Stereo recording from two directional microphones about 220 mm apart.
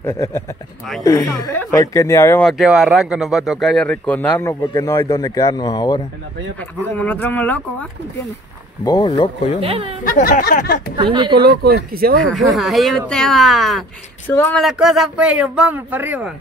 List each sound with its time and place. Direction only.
0.0 s speech: 15° left (ahead or behind)
7.0 s speech: 10° left (ahead or behind)
8.8 s speech: 20° left (ahead or behind)
9.6 s speech: 25° right (ahead or behind)
10.0 s speech: 35° left (ahead or behind)
11.0 s speech: 20° right (ahead or behind)
11.4 s speech: 45° right (ahead or behind)
12.4 s speech: centre (ahead or behind)